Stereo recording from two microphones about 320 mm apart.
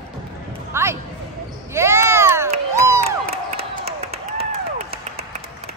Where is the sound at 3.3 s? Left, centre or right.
Right.